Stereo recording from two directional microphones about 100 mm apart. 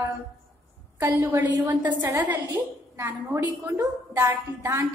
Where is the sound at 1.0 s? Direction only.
20° right (ahead or behind).